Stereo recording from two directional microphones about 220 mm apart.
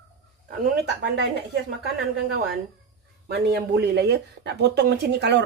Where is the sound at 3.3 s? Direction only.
50° right (ahead or behind).